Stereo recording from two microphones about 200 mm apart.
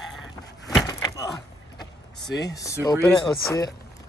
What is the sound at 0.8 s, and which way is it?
Wood, 15° left (ahead or behind).